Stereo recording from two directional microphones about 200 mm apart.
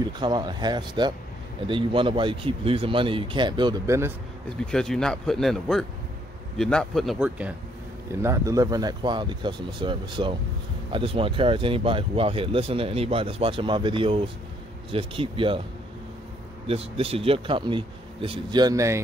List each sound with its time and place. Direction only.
0.0 s speech: 20° right (ahead or behind)
4.6 s speech: 5° left (ahead or behind); by 15.6 s 25° right (ahead or behind)
16.6 s speech: 30° right (ahead or behind)